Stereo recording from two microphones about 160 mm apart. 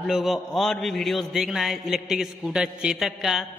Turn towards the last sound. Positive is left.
turn(degrees=0)  # may be behind; listen again after turning